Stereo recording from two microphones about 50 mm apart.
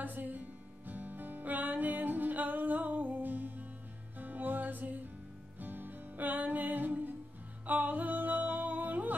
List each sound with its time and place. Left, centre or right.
0.0 s music: right